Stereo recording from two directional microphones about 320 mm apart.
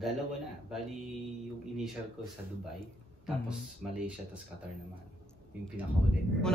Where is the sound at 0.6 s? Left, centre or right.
Centre.